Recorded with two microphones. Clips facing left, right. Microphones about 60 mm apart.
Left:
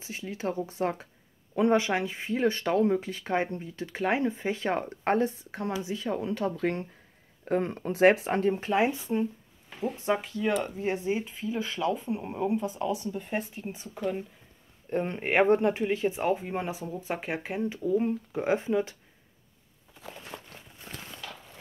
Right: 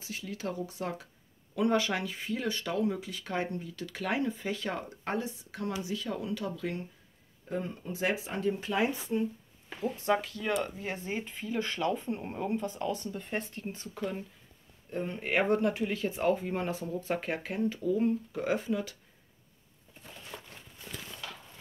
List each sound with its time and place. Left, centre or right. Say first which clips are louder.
0.0 s speech: left 4 dB; left
10.2 s speech: left 4 dB; left
11.1 s speech: left 2 dB; centre
14.9 s speech: left 5 dB; left
20.3 s a sound: right 1 dB; left